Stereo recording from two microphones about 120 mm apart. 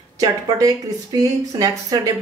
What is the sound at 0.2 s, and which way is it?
Speech, 30° right (ahead or behind).